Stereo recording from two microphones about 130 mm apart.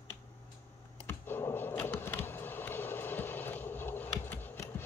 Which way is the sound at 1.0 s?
15° left (ahead or behind).